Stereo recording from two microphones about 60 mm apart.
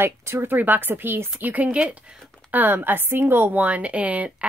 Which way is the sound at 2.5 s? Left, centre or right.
Right.